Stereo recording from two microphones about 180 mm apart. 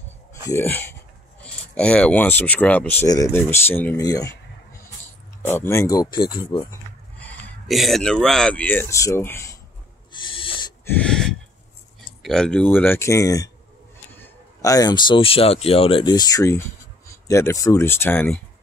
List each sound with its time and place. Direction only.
0.5 s speech: 10° left (ahead or behind)
5.5 s speech: 15° left (ahead or behind)
7.2 s speech: 5° left (ahead or behind)
10.1 s owl: 30° left (ahead or behind)
10.9 s gasp: 5° left (ahead or behind)
12.2 s speech: 5° left (ahead or behind)
14.6 s speech: 20° left (ahead or behind)